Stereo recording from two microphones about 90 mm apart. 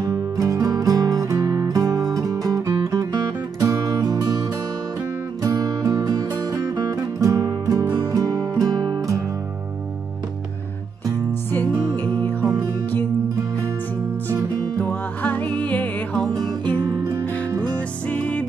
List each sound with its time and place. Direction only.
0.0 s music: 40° right (ahead or behind)
5.4 s music: 45° right (ahead or behind)
11.5 s music: 20° left (ahead or behind)
14.8 s music: 20° left (ahead or behind)
16.8 s music: 40° right (ahead or behind)
17.7 s music: 15° left (ahead or behind)